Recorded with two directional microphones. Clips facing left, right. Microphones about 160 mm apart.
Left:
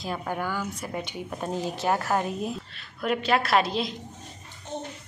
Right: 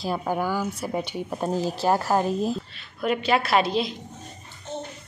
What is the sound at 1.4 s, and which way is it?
Speech, 35° right (ahead or behind).